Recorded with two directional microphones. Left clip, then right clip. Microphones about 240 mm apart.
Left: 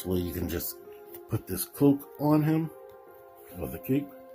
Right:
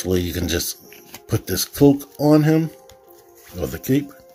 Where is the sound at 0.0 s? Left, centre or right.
Centre.